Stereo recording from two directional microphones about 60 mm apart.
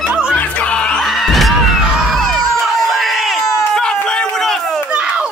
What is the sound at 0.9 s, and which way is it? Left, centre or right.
Crowd, centre.